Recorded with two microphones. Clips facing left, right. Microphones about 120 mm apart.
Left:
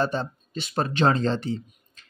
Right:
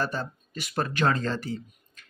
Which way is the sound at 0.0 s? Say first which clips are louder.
Left 4 dB; 25° left (ahead or behind).